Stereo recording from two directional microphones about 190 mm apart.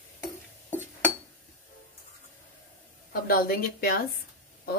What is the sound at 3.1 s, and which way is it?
Speech, 50° left (ahead or behind).